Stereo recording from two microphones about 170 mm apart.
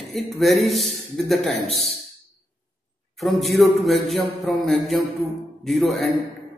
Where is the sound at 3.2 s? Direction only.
Centre (ahead or behind).